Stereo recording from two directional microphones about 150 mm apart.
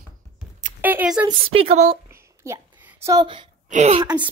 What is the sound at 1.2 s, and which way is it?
Speech, 40° right (ahead or behind).